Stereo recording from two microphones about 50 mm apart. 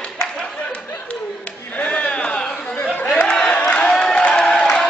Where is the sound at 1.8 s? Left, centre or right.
Left.